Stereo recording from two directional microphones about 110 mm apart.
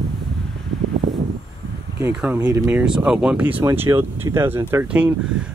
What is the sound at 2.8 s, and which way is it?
Speech, 5° right (ahead or behind).